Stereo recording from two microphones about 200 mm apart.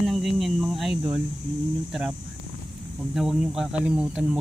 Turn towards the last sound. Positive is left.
turn(degrees=-5)  # may be behind; listen again after turning